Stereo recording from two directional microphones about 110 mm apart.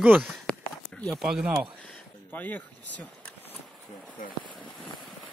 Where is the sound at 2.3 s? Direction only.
15° left (ahead or behind).